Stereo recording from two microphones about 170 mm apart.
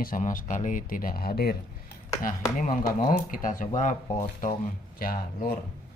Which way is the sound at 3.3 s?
50° left (ahead or behind).